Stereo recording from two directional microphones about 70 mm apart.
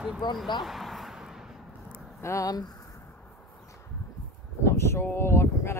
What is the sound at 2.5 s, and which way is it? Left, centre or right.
Speech, left.